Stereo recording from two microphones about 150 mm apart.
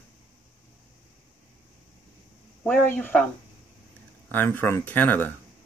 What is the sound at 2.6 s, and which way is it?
Speech, 10° left (ahead or behind).